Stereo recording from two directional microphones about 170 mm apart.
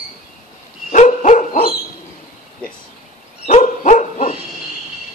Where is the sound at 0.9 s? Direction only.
45° left (ahead or behind).